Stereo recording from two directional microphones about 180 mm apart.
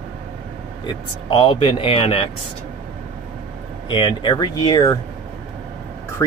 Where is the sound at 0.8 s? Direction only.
25° left (ahead or behind).